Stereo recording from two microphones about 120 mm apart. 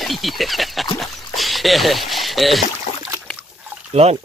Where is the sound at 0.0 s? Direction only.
Centre (ahead or behind).